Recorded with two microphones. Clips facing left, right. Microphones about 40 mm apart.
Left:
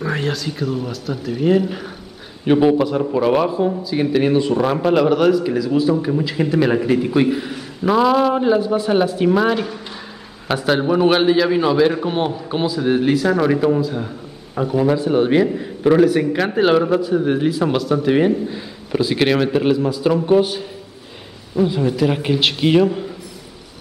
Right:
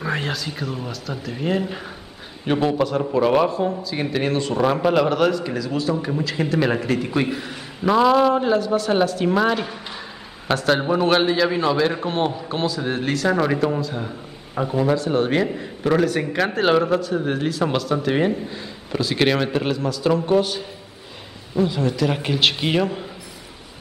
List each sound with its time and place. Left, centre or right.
0.1 s a man's voice: centre
1.1 s speech: centre
1.5 s a man's voice: centre
8.5 s a man's voice: centre